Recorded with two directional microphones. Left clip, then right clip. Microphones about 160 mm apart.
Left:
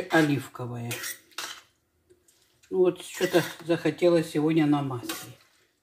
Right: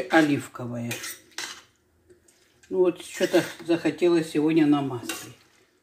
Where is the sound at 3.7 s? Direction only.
30° right (ahead or behind).